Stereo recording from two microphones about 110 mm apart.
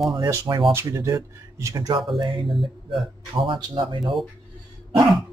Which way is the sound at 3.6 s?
40° right (ahead or behind).